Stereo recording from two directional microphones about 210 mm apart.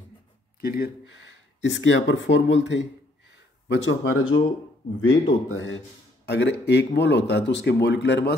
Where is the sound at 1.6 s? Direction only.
60° left (ahead or behind).